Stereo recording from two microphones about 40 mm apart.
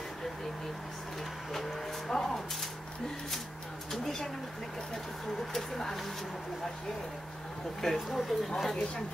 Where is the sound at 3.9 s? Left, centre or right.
Centre.